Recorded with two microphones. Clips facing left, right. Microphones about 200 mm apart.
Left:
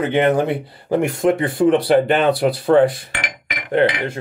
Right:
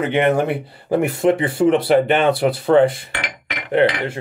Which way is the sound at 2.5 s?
25° right (ahead or behind).